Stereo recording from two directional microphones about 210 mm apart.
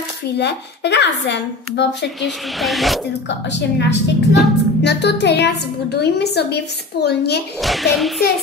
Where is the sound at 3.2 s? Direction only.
55° left (ahead or behind).